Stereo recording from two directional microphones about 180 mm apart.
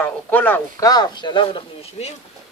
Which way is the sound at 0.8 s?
20° left (ahead or behind).